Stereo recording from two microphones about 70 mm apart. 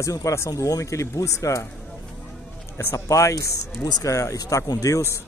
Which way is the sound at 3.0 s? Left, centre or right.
Left.